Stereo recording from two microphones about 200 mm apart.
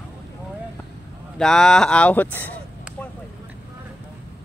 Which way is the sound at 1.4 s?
5° left (ahead or behind).